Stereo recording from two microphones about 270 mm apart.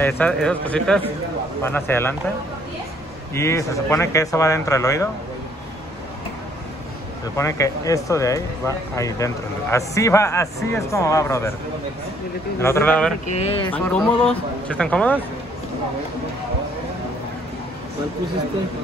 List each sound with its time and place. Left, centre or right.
0.0 s speech: centre
3.3 s speech: centre
7.3 s speech: centre
12.5 s speech: centre
13.3 s speech: left
13.7 s speech: centre